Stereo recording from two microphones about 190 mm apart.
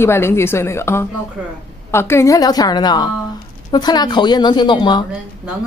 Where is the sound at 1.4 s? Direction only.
5° right (ahead or behind).